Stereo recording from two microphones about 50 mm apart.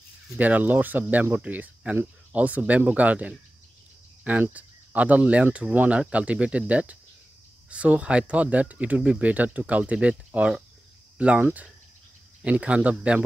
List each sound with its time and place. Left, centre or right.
0.4 s speech: right
9.3 s speech: right